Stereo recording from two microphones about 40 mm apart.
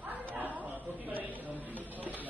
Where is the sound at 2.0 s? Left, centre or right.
Right.